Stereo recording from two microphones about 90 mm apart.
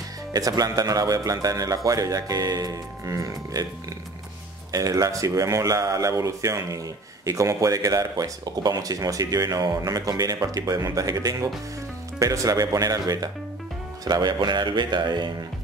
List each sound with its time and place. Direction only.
0.3 s speech: 45° right (ahead or behind)
4.7 s speech: 40° right (ahead or behind)